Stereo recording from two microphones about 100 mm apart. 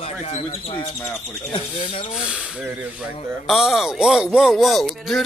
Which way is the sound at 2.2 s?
10° right (ahead or behind).